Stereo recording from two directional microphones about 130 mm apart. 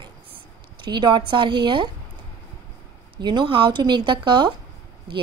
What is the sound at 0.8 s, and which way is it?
Speech, 35° right (ahead or behind).